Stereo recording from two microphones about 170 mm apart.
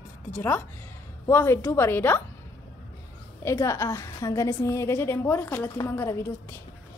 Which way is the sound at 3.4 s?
15° left (ahead or behind).